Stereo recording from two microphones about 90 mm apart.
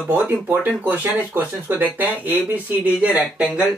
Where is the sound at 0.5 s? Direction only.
20° right (ahead or behind).